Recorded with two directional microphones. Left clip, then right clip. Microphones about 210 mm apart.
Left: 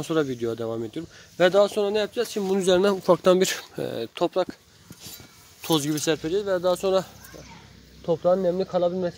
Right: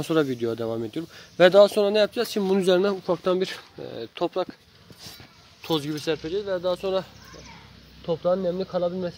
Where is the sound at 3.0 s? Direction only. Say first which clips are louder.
Left 5 dB; 40° left (ahead or behind).